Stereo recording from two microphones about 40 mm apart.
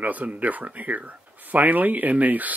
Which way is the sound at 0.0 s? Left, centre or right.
Right.